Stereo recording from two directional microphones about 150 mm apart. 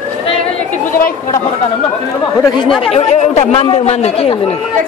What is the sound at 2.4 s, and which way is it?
Chatter, 25° left (ahead or behind).